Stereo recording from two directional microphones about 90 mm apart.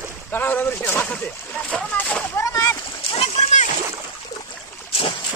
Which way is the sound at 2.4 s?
35° left (ahead or behind).